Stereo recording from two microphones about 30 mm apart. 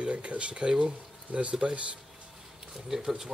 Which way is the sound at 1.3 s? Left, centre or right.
Right.